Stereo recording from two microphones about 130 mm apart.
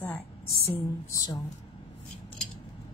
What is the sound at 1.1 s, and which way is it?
Speech, 30° left (ahead or behind).